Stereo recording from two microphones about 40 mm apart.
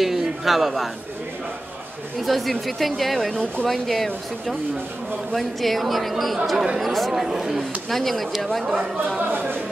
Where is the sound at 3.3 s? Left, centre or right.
Left.